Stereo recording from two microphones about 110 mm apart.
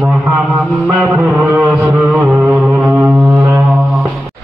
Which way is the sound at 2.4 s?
Centre (ahead or behind).